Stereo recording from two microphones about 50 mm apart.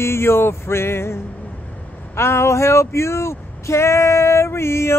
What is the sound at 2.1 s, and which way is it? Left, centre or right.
Speech, left.